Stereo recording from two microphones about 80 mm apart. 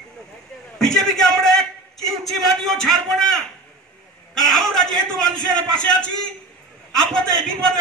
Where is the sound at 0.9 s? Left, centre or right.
Centre.